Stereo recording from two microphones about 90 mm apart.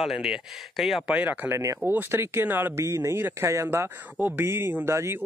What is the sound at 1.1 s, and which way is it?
Speech, 15° right (ahead or behind).